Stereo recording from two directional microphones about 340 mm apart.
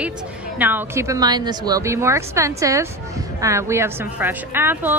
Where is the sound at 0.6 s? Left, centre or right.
Centre.